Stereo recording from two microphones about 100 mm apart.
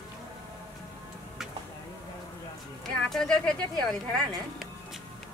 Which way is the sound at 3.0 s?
5° left (ahead or behind).